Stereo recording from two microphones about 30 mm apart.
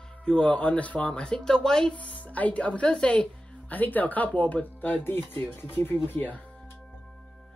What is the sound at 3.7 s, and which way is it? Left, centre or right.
Speech, left.